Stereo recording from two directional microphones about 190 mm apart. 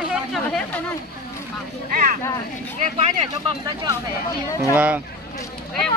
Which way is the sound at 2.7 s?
40° right (ahead or behind).